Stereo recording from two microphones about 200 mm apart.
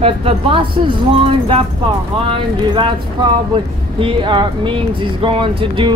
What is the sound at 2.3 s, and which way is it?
Speech, 25° right (ahead or behind).